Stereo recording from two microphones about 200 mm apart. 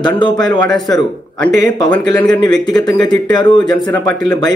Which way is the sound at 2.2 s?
20° left (ahead or behind).